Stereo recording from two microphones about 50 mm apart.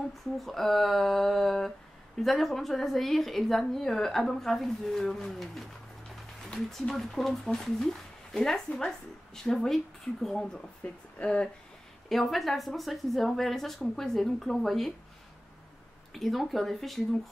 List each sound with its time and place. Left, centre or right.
0.1 s a woman's voice: centre
10.8 s speech: left
12.1 s a woman's voice: centre
16.1 s a woman's voice: centre